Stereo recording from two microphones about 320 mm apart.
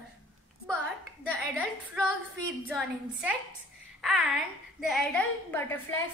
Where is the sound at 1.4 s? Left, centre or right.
Centre.